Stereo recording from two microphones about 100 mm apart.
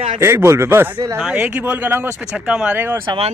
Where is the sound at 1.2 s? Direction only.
10° right (ahead or behind).